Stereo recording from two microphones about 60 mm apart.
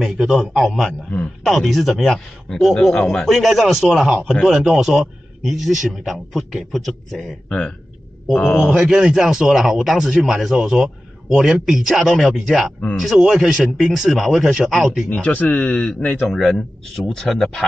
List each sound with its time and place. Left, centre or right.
0.0 s a man's voice: centre
0.4 s speech: centre
3.3 s speech: centre
7.4 s speech: centre
8.7 s speech: centre
15.0 s a man's voice: left; by 17.4 s centre
17.4 s a man's voice: centre